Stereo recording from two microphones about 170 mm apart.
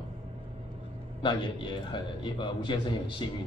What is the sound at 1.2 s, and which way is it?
A man's voice, 30° left (ahead or behind).